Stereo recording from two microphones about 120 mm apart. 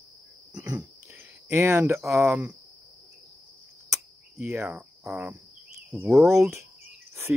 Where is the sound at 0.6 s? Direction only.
10° right (ahead or behind).